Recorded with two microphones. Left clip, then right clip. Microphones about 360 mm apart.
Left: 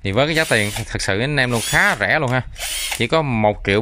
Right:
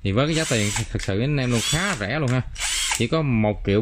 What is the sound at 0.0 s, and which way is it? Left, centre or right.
Speech, centre.